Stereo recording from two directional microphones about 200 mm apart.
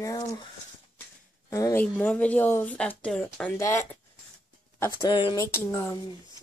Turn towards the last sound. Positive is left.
turn(degrees=10)  # may be behind; listen again after turning